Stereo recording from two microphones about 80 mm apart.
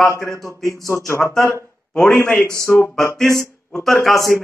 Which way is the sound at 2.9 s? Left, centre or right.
Centre.